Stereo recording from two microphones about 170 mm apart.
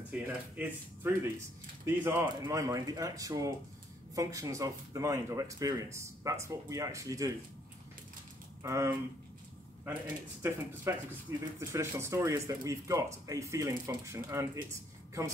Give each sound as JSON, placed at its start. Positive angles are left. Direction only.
{"t": 0.1, "sound": "speech", "side_deg": -10}
{"t": 8.6, "sound": "speech", "side_deg": -15}
{"t": 10.4, "sound": "speech", "side_deg": -15}